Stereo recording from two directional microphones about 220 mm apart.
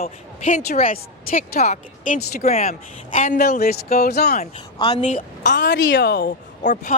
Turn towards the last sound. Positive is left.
turn(degrees=40)  # may be behind; listen again after turning